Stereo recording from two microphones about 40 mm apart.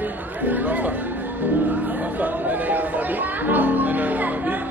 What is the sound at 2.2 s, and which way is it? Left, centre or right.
Speech, right.